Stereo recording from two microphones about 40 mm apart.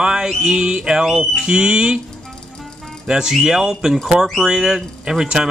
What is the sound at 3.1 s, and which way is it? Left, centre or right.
Speech, centre.